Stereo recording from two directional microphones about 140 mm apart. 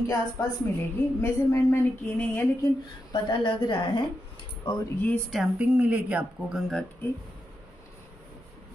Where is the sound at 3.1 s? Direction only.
35° left (ahead or behind).